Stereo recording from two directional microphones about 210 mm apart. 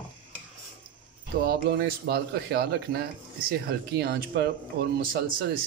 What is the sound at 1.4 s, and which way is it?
Speech, 50° right (ahead or behind).